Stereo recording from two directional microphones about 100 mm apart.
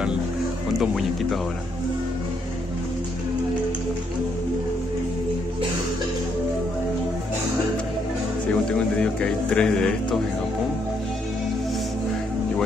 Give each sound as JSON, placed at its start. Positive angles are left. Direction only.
{"t": 0.7, "sound": "speech", "side_deg": 0}
{"t": 8.7, "sound": "speech", "side_deg": 10}